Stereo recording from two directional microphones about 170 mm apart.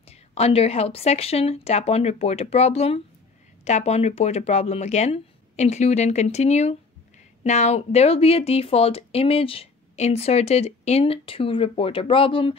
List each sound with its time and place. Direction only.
0.1 s speech: 35° left (ahead or behind)